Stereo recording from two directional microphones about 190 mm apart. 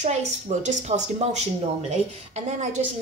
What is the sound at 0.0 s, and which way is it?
Speech, 40° right (ahead or behind).